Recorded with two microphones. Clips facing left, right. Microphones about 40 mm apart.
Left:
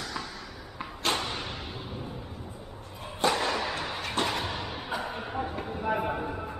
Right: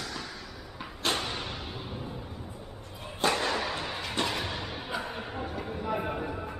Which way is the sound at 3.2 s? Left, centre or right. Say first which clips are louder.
Left 1 dB; centre.